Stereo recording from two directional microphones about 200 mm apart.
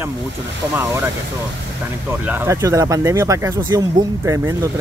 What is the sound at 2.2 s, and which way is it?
Speech, 10° right (ahead or behind).